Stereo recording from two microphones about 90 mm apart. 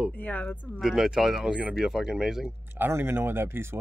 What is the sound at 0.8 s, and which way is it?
Speech, 5° right (ahead or behind).